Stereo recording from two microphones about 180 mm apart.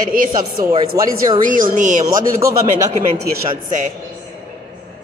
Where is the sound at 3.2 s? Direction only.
55° right (ahead or behind).